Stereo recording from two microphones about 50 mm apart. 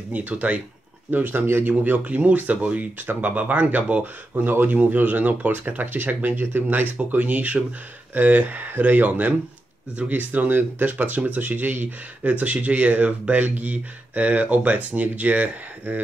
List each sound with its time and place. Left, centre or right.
0.1 s speech: right
1.1 s speech: right
1.7 s speech: right
3.1 s speech: right